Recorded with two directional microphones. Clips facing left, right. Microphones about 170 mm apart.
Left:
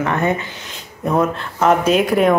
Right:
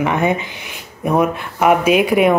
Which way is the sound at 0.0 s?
15° right (ahead or behind).